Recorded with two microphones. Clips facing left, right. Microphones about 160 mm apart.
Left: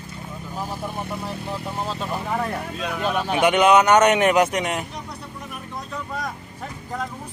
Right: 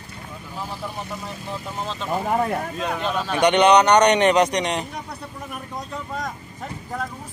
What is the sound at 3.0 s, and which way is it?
Speech, 15° left (ahead or behind).